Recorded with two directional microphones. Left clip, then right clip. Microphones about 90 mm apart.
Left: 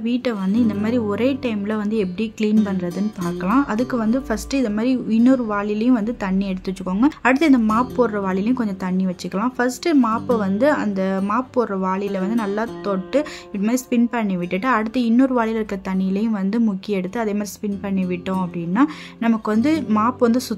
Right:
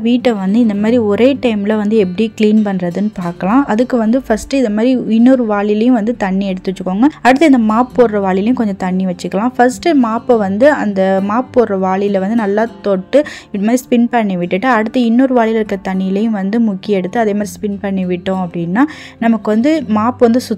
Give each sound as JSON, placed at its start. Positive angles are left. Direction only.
{"t": 0.0, "sound": "a woman's voice", "side_deg": -60}
{"t": 3.4, "sound": "a woman's voice", "side_deg": -45}